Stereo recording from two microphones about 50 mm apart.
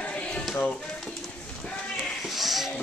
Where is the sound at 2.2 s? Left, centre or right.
Centre.